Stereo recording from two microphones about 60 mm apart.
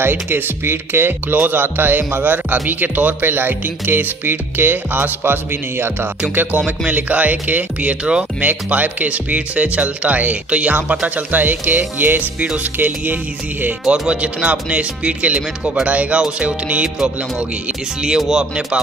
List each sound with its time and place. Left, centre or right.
0.0 s speech: right
6.9 s speech: right
8.5 s speech: right
13.8 s speech: centre
18.0 s speech: centre